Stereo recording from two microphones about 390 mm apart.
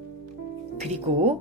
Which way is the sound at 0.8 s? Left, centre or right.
Centre.